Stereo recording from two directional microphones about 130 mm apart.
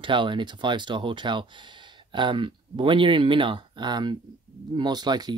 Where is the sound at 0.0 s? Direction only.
40° right (ahead or behind).